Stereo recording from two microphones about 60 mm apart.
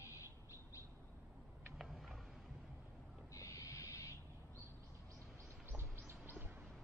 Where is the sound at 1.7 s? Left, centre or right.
Centre.